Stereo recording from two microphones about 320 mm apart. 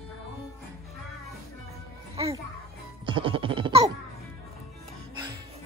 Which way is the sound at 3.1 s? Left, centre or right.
Centre.